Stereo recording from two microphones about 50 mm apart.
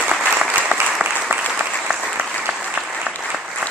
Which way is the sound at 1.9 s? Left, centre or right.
Centre.